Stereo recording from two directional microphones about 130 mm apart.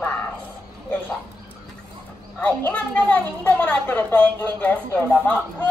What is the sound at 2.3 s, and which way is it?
A woman's voice, 15° left (ahead or behind).